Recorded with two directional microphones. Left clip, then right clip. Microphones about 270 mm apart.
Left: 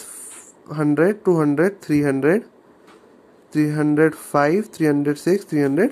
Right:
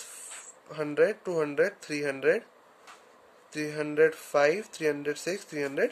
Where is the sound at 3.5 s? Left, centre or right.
Centre.